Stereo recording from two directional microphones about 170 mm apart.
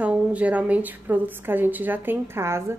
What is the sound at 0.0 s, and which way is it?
Speech, 10° right (ahead or behind).